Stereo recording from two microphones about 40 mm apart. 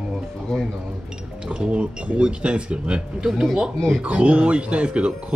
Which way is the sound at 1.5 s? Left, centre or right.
Right.